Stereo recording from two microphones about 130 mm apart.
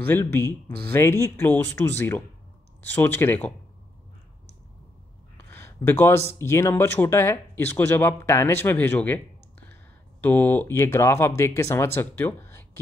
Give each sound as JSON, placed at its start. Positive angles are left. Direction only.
{"t": 0.0, "sound": "speech", "side_deg": 20}
{"t": 5.5, "sound": "speech", "side_deg": 20}
{"t": 10.2, "sound": "speech", "side_deg": 15}